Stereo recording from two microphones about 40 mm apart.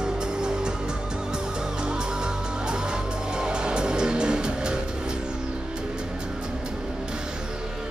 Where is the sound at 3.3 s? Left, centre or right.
Right.